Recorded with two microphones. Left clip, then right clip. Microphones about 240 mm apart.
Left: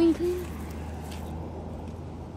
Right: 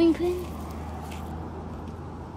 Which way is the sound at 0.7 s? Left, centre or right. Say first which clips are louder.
Right 2 dB; right.